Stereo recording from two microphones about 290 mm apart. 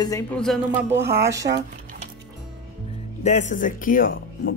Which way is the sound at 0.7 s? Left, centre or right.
Right.